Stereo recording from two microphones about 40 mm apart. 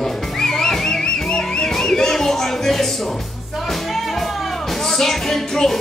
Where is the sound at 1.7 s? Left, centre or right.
Centre.